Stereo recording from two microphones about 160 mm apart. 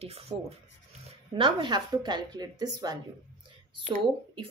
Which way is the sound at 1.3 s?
30° right (ahead or behind).